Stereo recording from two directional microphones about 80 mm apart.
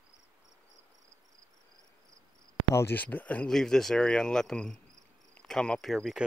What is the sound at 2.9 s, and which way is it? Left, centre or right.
Speech, left.